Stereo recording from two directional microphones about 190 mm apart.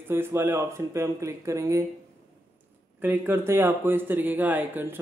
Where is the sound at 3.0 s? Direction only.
10° right (ahead or behind).